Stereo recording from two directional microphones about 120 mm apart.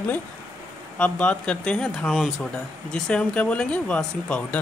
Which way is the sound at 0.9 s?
10° left (ahead or behind).